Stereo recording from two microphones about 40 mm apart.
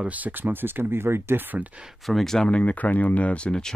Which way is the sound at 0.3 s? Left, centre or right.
Right.